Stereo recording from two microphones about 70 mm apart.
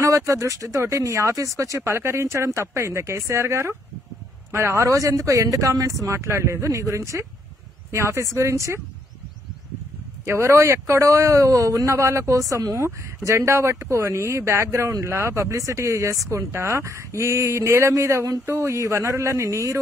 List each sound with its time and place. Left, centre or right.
0.0 s speech: right
10.2 s speech: right